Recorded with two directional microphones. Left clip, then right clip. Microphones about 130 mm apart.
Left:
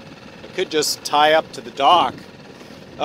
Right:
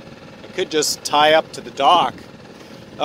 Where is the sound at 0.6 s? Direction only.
5° right (ahead or behind).